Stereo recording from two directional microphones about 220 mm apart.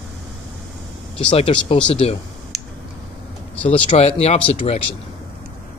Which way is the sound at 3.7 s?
30° left (ahead or behind).